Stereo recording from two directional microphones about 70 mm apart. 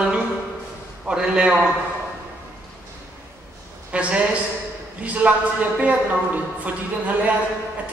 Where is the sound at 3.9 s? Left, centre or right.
Centre.